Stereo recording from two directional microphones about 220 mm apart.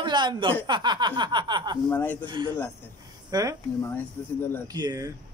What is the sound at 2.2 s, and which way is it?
Speech, 20° right (ahead or behind).